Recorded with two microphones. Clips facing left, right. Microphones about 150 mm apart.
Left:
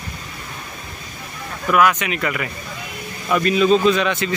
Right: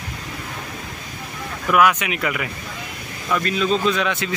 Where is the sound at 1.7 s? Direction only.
5° right (ahead or behind).